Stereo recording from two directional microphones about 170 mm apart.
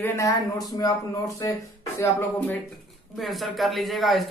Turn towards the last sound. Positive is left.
turn(degrees=0)  # may be behind; listen again after turning